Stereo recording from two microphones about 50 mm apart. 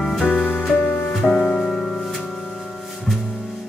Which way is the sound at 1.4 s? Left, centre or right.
Left.